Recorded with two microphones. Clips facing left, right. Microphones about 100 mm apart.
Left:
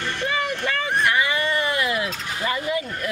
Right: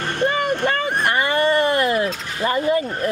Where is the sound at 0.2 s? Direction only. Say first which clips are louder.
Right 7 dB; 45° right (ahead or behind).